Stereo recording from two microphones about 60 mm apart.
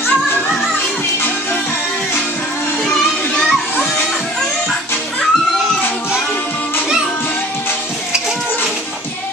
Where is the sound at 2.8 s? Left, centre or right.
Centre.